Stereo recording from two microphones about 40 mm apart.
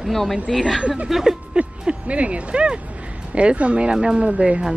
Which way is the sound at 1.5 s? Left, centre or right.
Right.